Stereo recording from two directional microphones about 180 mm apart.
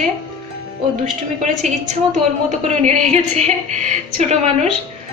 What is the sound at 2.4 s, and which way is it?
A man's voice, 40° right (ahead or behind).